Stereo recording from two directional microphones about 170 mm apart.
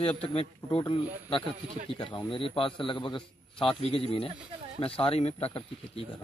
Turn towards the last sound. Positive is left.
turn(degrees=35)  # may be behind; listen again after turning